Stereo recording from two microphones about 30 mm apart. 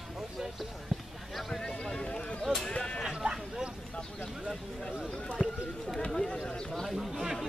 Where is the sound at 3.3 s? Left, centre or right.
Right.